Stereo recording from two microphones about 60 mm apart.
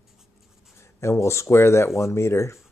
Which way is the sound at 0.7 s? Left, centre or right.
Left.